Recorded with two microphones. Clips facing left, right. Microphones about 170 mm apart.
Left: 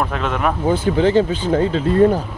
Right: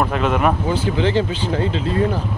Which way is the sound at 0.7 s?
45° left (ahead or behind).